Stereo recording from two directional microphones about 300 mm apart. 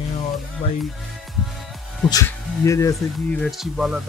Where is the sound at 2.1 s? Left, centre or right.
Centre.